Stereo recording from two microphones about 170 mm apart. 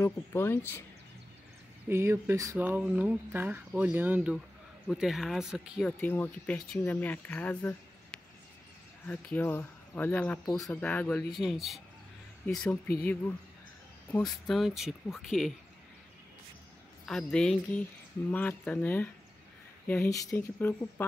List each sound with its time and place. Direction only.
0.0 s speech: 15° left (ahead or behind)
1.9 s speech: 15° right (ahead or behind)
5.9 s speech: 10° left (ahead or behind)
17.0 s speech: 5° left (ahead or behind)